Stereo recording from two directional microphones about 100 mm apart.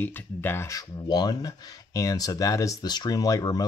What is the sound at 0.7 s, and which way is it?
Speech, 45° left (ahead or behind).